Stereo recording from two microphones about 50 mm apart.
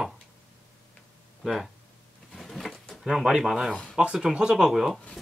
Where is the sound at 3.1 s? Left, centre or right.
Centre.